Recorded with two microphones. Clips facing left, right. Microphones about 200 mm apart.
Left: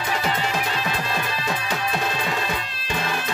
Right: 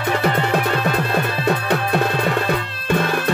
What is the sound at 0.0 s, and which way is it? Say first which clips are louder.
Music: right 6 dB; 60° right (ahead or behind).